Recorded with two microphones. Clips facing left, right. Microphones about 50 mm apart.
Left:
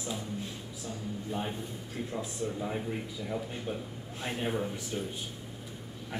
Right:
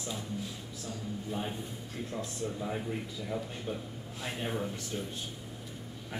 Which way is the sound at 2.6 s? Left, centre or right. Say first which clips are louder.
Left 1 dB; centre.